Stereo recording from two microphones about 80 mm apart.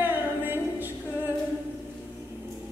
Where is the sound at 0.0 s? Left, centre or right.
Right.